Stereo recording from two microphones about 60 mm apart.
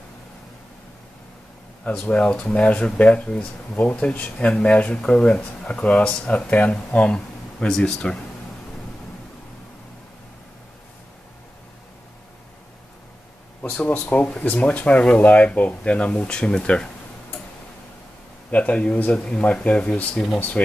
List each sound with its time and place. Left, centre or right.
1.9 s speech: centre
13.8 s speech: left
18.5 s speech: left